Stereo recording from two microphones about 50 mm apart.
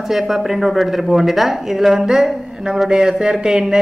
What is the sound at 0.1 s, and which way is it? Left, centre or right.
A woman's voice, centre.